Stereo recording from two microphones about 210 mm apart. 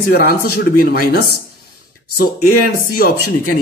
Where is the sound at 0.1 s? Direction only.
45° left (ahead or behind).